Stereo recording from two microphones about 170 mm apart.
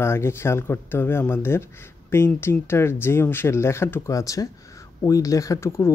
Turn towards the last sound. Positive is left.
turn(degrees=15)  # may be behind; listen again after turning